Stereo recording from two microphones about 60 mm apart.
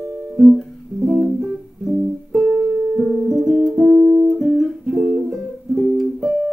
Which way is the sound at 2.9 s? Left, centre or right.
Centre.